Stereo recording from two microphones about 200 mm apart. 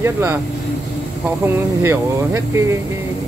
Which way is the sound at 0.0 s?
10° right (ahead or behind).